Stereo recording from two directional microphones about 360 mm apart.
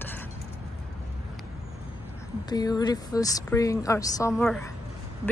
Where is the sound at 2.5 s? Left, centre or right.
Centre.